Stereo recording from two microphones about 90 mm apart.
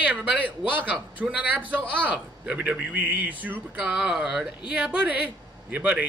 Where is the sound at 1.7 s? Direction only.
15° right (ahead or behind).